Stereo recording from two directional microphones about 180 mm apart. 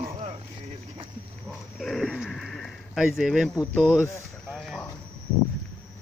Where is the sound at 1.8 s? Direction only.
Centre (ahead or behind).